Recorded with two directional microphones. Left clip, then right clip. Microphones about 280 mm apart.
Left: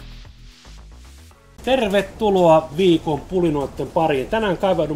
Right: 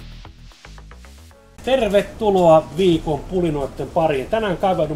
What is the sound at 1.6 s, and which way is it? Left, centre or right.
A man's voice, centre.